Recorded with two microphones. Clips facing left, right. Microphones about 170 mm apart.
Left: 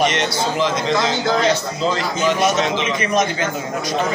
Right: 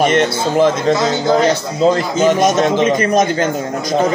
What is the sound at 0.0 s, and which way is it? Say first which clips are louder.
A man's voice: right 5 dB; 50° right (ahead or behind).